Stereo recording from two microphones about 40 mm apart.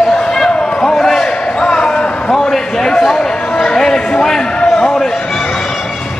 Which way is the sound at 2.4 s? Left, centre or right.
Centre.